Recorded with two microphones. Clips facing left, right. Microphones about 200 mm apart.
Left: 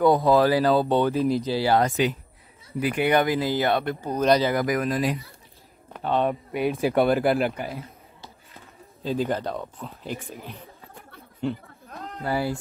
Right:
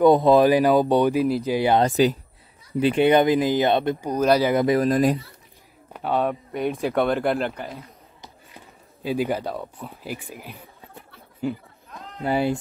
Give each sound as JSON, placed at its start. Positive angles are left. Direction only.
{"t": 0.0, "sound": "speech", "side_deg": -20}
{"t": 1.2, "sound": "speech", "side_deg": 0}
{"t": 1.5, "sound": "speech", "side_deg": -20}
{"t": 4.6, "sound": "speech", "side_deg": -30}
{"t": 4.9, "sound": "speech", "side_deg": -45}
{"t": 5.9, "sound": "speech", "side_deg": -5}
{"t": 8.2, "sound": "a sound", "side_deg": -15}
{"t": 11.4, "sound": "speech", "side_deg": -5}
{"t": 12.2, "sound": "speech", "side_deg": -20}